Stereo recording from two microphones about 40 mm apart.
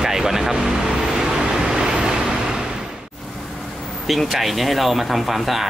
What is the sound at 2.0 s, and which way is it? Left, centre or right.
Vehicle, centre.